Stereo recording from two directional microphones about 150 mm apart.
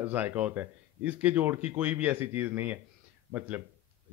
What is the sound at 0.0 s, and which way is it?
A man's voice, 10° right (ahead or behind).